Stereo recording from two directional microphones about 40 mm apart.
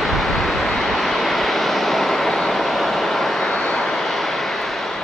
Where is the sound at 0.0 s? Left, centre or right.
Centre.